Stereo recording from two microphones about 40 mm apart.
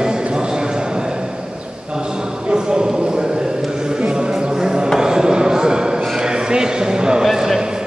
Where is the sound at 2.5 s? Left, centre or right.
Centre.